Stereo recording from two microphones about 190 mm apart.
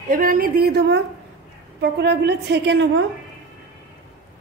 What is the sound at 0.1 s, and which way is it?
A woman's voice, 50° right (ahead or behind).